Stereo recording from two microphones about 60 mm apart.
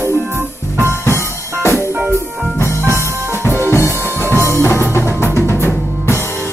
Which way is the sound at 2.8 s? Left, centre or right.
Right.